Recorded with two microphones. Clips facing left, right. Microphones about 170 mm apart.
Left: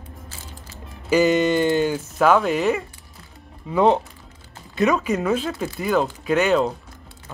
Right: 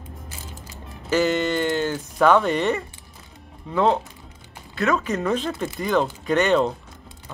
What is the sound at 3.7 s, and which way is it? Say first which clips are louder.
Speech: left 3 dB; 15° left (ahead or behind).